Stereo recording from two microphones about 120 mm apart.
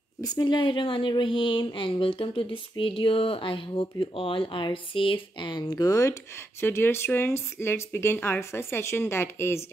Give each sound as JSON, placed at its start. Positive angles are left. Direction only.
{"t": 0.2, "sound": "speech", "side_deg": 35}